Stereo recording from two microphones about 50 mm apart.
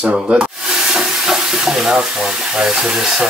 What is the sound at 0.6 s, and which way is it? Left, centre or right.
Water tap, centre.